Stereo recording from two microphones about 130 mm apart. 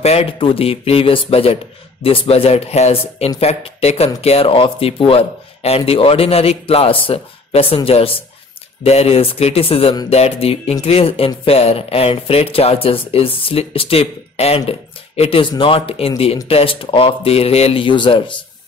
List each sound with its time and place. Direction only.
0.0 s speech: 50° left (ahead or behind)